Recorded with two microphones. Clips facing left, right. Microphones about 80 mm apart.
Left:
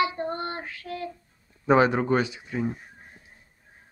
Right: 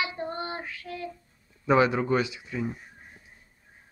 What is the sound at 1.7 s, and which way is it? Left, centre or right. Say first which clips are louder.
Speech: left 2 dB; left.